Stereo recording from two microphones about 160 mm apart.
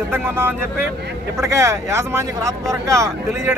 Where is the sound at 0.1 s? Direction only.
15° right (ahead or behind).